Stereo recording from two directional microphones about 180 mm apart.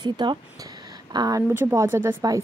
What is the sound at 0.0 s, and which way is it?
Speech, 25° right (ahead or behind).